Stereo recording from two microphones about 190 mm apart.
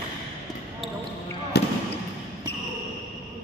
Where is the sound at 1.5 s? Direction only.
60° left (ahead or behind).